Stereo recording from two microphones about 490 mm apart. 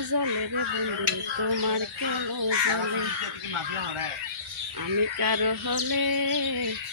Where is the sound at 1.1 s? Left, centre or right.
Right.